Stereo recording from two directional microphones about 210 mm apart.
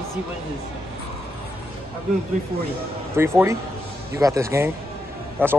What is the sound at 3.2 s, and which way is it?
Speech, 10° right (ahead or behind).